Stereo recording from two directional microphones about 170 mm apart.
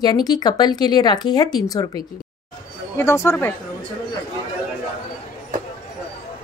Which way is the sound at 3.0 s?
15° left (ahead or behind).